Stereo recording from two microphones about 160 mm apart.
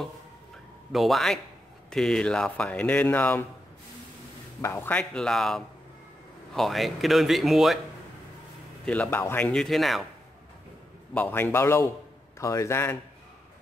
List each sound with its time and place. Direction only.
0.9 s speech: centre (ahead or behind)
4.6 s speech: 15° left (ahead or behind); by 7.8 s centre (ahead or behind)
8.8 s speech: 10° left (ahead or behind)
11.1 s speech: 15° left (ahead or behind)